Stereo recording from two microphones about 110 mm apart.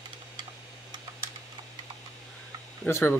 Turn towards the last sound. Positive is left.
turn(degrees=25)  # may be behind; listen again after turning